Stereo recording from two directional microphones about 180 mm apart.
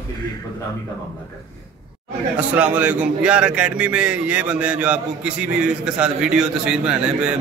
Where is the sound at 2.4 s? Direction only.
10° right (ahead or behind).